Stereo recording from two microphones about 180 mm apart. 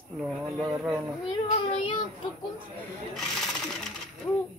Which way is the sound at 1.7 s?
30° left (ahead or behind).